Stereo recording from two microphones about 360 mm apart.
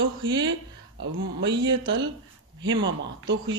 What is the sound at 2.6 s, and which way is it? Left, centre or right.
Speech, right.